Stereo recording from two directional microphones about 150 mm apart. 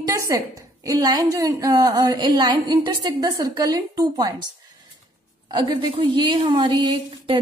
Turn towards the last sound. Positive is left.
turn(degrees=-30)  # may be behind; listen again after turning